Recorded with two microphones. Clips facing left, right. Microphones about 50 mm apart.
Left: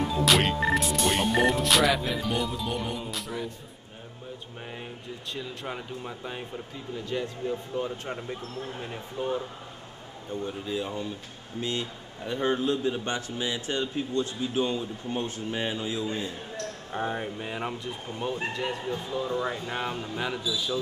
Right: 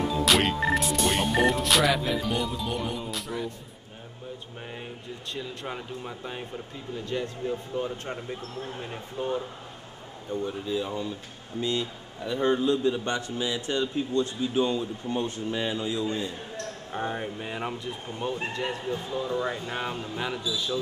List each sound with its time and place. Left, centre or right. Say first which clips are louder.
0.0 s speech: even; centre
5.3 s speech: even; centre
10.4 s speech: right 1 dB; centre